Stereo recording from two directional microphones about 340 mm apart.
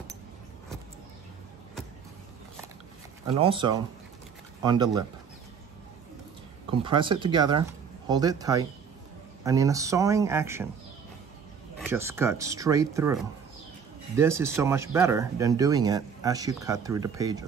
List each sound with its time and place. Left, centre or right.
3.3 s speech: centre
6.7 s speech: centre
11.8 s speech: centre